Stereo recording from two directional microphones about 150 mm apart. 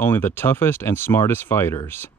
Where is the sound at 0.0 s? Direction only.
15° left (ahead or behind).